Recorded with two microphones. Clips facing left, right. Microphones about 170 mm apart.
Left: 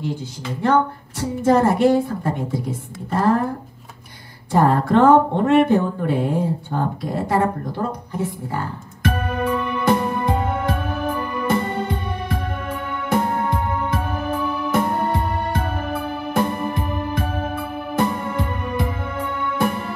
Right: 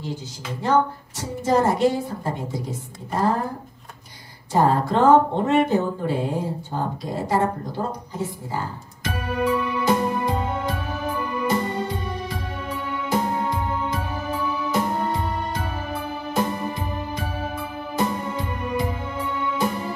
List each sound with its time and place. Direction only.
1.4 s speech: 55° left (ahead or behind)
4.5 s speech: 55° left (ahead or behind)
8.5 s music: 60° left (ahead or behind)